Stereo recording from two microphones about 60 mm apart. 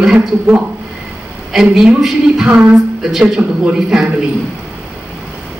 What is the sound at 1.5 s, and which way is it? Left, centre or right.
Speech, centre.